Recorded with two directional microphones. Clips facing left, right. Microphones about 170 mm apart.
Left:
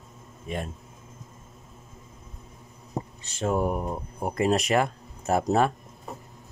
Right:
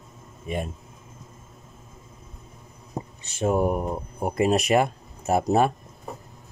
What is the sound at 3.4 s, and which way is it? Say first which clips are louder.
Speech: right 3 dB; 10° right (ahead or behind).